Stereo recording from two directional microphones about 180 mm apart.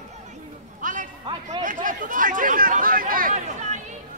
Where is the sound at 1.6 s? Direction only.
45° right (ahead or behind).